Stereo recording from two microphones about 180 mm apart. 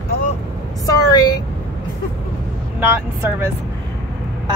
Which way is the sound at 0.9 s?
20° left (ahead or behind).